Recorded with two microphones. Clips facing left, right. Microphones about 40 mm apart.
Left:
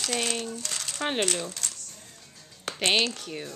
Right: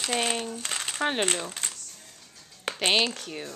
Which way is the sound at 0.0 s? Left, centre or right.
Centre.